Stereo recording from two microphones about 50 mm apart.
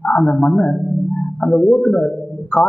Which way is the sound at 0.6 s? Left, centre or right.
Centre.